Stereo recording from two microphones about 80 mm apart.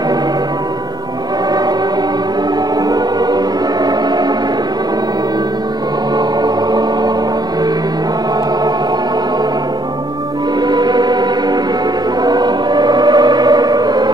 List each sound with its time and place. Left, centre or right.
6.1 s music: right
10.7 s music: right
12.2 s choir: right